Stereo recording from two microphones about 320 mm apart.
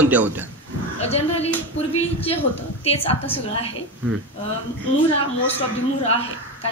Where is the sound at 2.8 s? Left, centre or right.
Centre.